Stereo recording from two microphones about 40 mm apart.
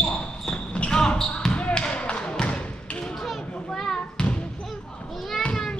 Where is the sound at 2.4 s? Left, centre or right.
Left.